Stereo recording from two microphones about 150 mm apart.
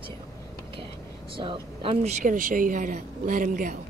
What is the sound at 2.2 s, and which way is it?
A woman's voice, 60° right (ahead or behind).